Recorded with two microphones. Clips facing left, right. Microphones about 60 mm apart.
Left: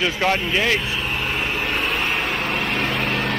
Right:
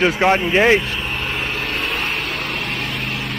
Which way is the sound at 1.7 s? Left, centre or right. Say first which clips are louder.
Left 1 dB; centre.